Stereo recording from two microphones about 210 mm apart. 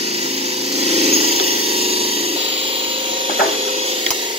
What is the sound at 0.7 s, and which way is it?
Dental drill, 30° right (ahead or behind).